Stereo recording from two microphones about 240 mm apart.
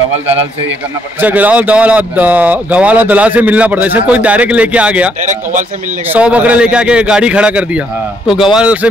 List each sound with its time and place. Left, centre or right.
1.2 s a man's voice: centre
5.2 s a man's voice: right
6.1 s a man's voice: centre